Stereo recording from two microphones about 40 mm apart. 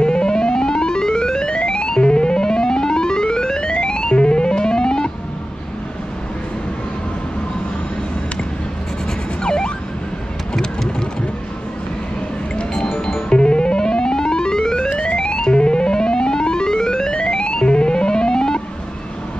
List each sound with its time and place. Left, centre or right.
0.0 s music: left
9.4 s a sound: left
13.3 s music: left
14.9 s music: left
15.1 s music: centre